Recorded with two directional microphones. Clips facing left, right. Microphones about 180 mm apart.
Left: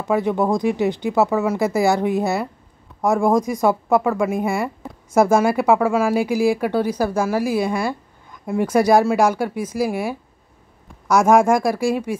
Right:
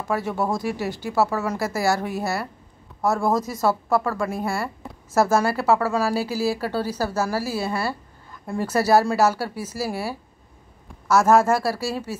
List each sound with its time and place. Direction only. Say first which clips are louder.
0.0 s speech: left 6 dB; 15° left (ahead or behind)
8.3 s a sound: left 6 dB; 15° left (ahead or behind)
8.7 s speech: left 3 dB; 15° left (ahead or behind)